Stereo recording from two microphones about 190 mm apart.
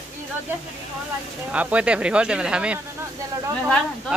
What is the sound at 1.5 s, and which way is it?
Speech, 5° right (ahead or behind).